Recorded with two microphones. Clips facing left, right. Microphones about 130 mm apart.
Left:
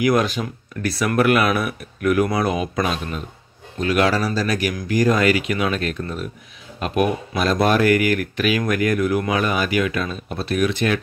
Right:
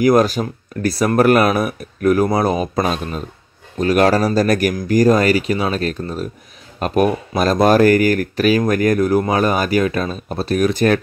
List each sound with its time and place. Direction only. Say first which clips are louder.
0.0 s speech: right 5 dB; 40° right (ahead or behind)